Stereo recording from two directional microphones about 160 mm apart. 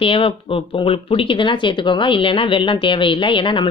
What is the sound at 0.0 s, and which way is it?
Speech, 35° left (ahead or behind).